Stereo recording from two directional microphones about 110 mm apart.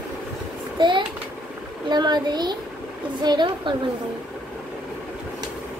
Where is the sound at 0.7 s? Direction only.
45° right (ahead or behind).